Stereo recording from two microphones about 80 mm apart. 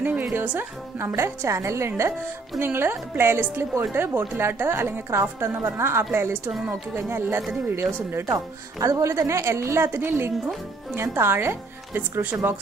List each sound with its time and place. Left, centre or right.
0.5 s a woman's voice: right
8.3 s a woman's voice: right